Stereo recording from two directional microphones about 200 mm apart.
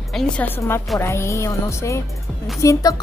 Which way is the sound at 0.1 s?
5° left (ahead or behind).